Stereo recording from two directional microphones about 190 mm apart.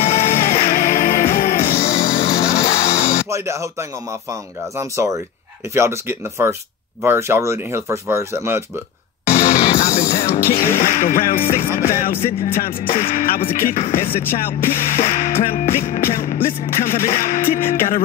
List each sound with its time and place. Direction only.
0.0 s music: 35° left (ahead or behind)
2.0 s music: 20° left (ahead or behind)
3.3 s speech: 15° right (ahead or behind)
9.4 s music: 20° left (ahead or behind)
9.8 s music: 45° left (ahead or behind)
12.2 s music: 30° left (ahead or behind)
13.0 s music: 50° left (ahead or behind)